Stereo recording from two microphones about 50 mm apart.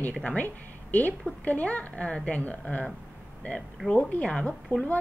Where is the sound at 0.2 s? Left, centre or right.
Left.